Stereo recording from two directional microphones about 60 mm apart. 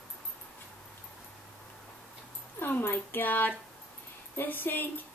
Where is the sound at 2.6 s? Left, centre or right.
Left.